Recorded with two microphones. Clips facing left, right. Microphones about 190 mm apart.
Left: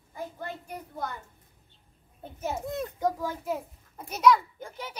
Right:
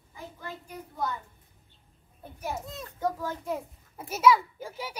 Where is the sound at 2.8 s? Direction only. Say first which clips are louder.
Right 1 dB; 15° left (ahead or behind); by 5.0 s 10° right (ahead or behind).